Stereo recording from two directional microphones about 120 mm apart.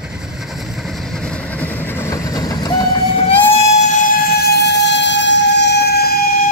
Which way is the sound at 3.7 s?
80° left.